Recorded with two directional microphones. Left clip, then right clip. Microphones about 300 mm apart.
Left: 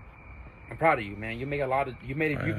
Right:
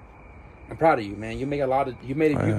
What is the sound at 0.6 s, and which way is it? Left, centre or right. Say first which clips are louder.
Speech: right 4 dB; right.